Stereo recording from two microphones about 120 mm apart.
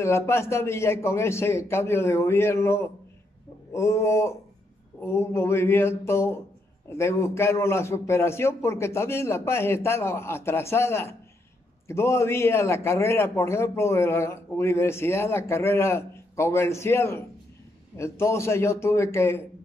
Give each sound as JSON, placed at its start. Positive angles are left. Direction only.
{"t": 0.0, "sound": "a man's voice", "side_deg": 20}